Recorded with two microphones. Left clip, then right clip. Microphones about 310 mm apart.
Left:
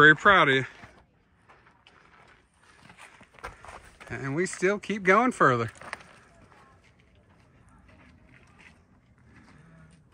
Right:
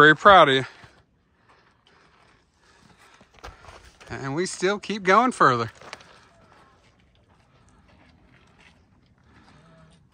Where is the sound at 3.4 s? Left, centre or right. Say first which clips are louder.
Left 2 dB; centre.